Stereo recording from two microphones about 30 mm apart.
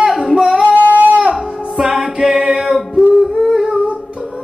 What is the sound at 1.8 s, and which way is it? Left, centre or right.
Music, centre.